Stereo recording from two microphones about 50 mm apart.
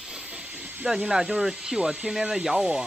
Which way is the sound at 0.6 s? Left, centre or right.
Right.